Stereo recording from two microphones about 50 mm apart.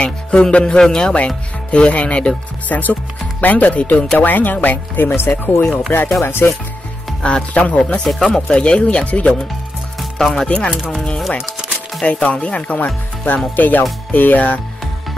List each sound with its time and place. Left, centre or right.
0.0 s music: left
0.7 s speech: centre
1.1 s speech: left
5.9 s speech: left
6.2 s speech: left
7.2 s speech: left
10.1 s speech: centre
12.0 s speech: left